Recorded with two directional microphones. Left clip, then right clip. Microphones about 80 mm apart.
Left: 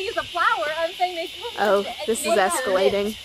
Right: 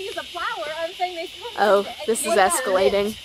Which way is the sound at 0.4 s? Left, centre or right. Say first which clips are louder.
Left 7 dB; left.